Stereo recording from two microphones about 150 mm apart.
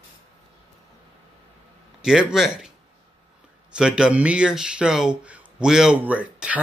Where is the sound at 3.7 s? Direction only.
5° right (ahead or behind).